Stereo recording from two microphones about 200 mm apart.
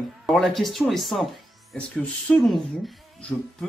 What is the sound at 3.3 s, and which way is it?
Insect, 10° left (ahead or behind).